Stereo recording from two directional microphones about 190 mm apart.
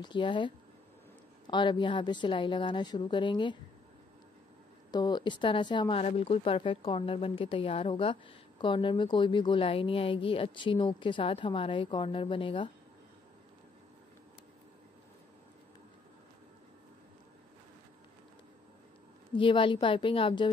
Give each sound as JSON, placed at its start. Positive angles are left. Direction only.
{"t": 0.0, "sound": "speech", "side_deg": 25}
{"t": 1.5, "sound": "speech", "side_deg": 25}
{"t": 4.9, "sound": "speech", "side_deg": 20}
{"t": 19.3, "sound": "speech", "side_deg": 25}